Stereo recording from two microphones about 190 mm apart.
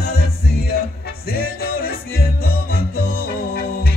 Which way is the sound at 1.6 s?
55° left (ahead or behind).